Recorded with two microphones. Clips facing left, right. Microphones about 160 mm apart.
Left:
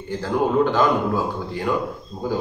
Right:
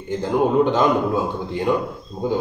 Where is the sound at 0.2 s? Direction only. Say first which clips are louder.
Right 2 dB; 20° right (ahead or behind).